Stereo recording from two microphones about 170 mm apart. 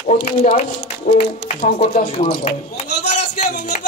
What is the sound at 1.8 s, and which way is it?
Speech, 40° left (ahead or behind).